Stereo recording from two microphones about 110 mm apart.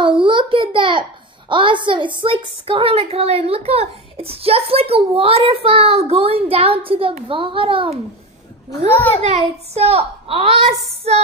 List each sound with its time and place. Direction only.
0.0 s a child's voice: 50° right (ahead or behind)
9.2 s a woman's voice: 85° right; by 10.5 s 60° right (ahead or behind)